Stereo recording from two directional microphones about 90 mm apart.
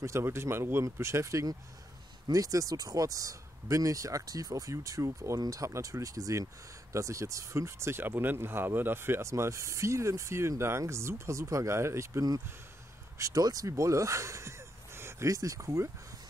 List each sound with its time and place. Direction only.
0.0 s speech: 30° right (ahead or behind)